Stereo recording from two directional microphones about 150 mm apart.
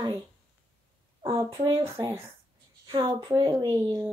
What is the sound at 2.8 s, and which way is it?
Speech, 30° right (ahead or behind).